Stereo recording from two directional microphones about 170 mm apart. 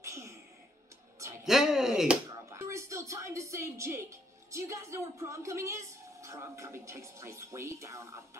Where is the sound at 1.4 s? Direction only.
5° right (ahead or behind).